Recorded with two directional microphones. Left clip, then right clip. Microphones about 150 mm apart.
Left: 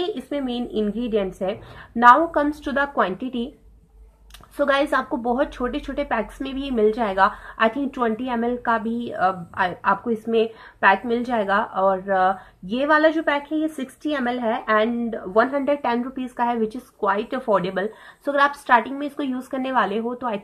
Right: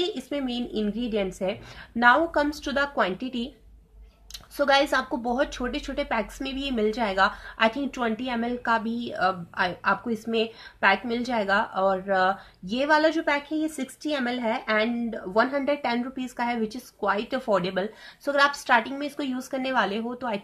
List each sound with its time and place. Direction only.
0.0 s a sound: 15° right (ahead or behind)
0.5 s speech: 15° right (ahead or behind)
4.6 s speech: 10° right (ahead or behind)